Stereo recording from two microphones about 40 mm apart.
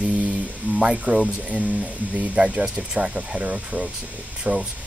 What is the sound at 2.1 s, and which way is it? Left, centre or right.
Speech, right.